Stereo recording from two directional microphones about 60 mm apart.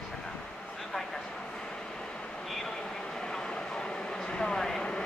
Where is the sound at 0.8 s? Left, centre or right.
Centre.